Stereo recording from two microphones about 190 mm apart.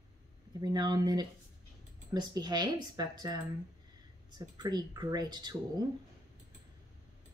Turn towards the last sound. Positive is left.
turn(degrees=-20)  # may be behind; listen again after turning